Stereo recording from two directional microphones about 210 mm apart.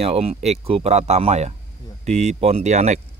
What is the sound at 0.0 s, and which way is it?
Speech, 30° right (ahead or behind).